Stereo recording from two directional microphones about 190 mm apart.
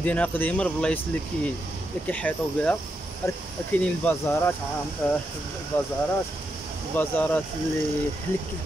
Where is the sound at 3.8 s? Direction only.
5° left (ahead or behind).